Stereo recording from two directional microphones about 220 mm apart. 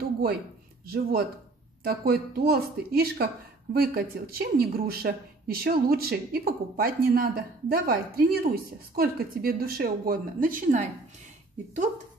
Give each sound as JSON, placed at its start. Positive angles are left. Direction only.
{"t": 0.8, "sound": "speech", "side_deg": -45}